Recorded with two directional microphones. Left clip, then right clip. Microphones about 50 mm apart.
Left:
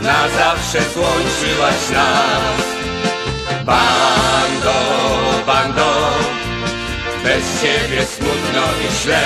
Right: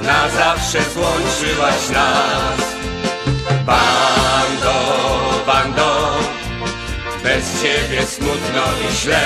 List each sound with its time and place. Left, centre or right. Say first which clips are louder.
0.0 s music: left 1 dB; centre
3.6 s music: left 1 dB; left
7.2 s music: left 1 dB; left